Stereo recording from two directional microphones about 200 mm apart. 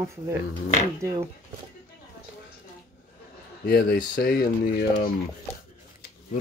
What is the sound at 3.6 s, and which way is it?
Speech, 50° left (ahead or behind).